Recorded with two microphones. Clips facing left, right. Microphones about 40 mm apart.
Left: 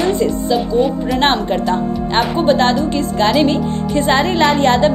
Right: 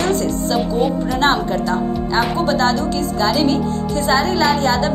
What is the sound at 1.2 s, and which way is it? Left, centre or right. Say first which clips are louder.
Speech: left 1 dB; left.